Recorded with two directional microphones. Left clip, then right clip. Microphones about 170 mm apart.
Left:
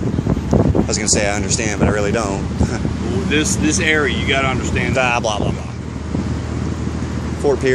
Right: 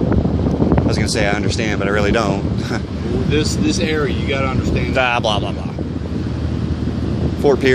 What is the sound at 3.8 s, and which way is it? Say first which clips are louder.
Speech: left 3 dB; 10° right (ahead or behind).